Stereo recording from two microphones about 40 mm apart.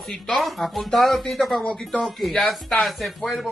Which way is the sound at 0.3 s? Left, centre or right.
Centre.